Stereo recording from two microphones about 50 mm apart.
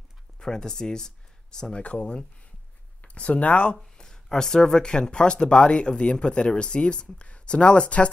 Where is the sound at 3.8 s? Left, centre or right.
Centre.